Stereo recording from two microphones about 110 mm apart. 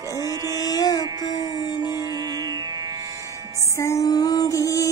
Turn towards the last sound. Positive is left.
turn(degrees=30)  # may be behind; listen again after turning